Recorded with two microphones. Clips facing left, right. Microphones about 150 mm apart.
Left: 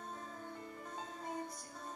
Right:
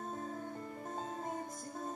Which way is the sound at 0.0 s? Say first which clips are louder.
Right 6 dB; 45° right (ahead or behind).